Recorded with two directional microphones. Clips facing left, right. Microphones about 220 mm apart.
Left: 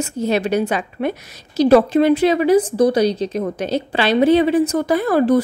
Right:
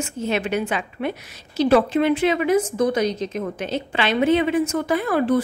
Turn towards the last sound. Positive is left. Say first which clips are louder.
# left 5 dB
turn(degrees=40)  # may be behind; listen again after turning